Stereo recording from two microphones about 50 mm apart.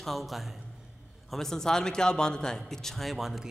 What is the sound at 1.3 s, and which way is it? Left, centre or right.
A man's voice, centre.